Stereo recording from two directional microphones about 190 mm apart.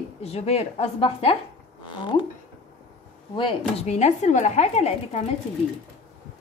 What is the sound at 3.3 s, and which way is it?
A woman's voice, 30° left (ahead or behind).